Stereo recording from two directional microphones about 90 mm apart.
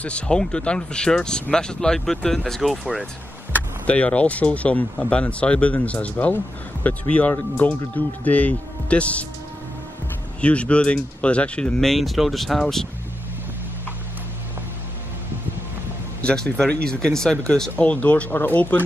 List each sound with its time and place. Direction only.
0.0 s speech: 10° left (ahead or behind)
3.8 s speech: 15° left (ahead or behind)
10.4 s speech: 15° left (ahead or behind)
16.2 s speech: 10° left (ahead or behind)